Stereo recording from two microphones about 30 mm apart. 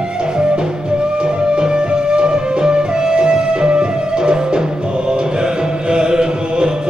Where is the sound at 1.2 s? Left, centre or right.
Right.